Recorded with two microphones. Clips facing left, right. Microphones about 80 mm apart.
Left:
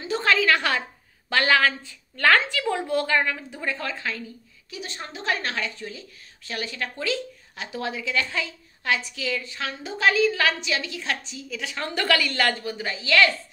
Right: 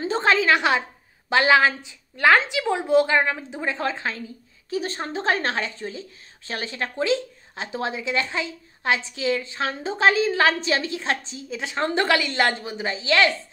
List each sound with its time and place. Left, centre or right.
0.0 s a woman's voice: right